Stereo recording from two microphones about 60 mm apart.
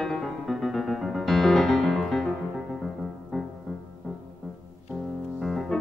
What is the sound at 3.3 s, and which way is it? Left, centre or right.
Music, centre.